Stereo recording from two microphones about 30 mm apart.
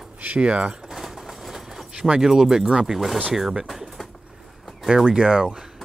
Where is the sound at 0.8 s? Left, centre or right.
Centre.